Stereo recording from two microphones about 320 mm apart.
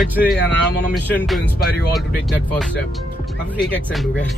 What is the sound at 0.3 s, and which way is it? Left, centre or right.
Speech, left.